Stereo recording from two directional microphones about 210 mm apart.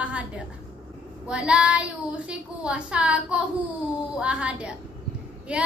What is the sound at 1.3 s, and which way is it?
A woman's voice, 5° right (ahead or behind).